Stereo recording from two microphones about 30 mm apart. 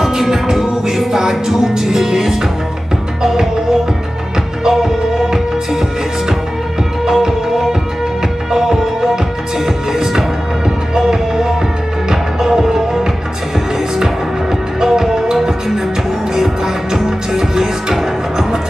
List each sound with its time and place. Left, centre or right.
0.0 s music: centre
4.6 s music: centre
7.1 s music: centre
11.0 s music: centre
14.8 s music: centre
16.3 s music: centre